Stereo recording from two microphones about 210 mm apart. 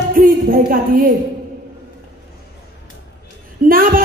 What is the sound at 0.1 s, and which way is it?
A woman's voice, 40° right (ahead or behind).